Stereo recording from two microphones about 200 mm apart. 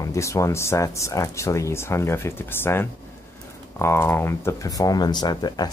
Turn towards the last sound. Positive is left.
turn(degrees=20)  # may be behind; listen again after turning